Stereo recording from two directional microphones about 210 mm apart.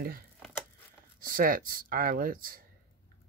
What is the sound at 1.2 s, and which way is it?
Speech, 40° right (ahead or behind).